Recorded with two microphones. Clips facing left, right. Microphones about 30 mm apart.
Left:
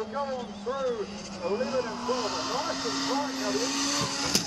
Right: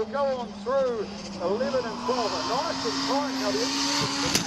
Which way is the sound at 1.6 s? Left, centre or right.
Right.